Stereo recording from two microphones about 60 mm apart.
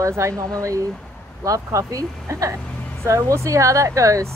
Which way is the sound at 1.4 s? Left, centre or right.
Right.